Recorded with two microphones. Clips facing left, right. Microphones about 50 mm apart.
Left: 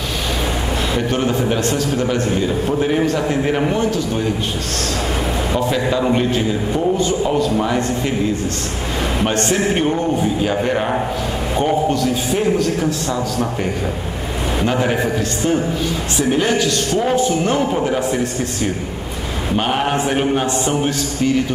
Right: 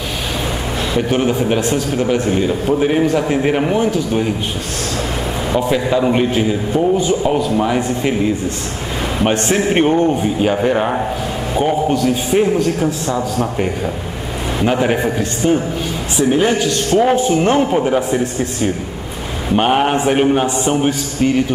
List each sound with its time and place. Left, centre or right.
1.1 s a man's voice: centre
5.5 s a man's voice: centre
9.2 s a man's voice: right
10.6 s a man's voice: centre
12.3 s a man's voice: right
14.6 s a man's voice: centre
16.2 s a man's voice: centre
16.5 s a man's voice: right
17.7 s a man's voice: centre
19.5 s a man's voice: right